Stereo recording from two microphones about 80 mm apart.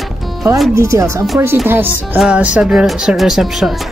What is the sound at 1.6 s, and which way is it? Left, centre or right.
Speech, right.